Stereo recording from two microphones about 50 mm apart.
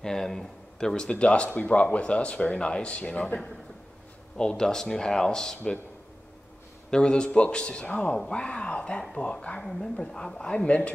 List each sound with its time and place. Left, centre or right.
0.0 s speech: centre
4.4 s speech: centre
6.9 s speech: centre